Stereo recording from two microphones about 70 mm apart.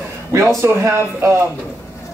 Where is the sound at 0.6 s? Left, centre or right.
Right.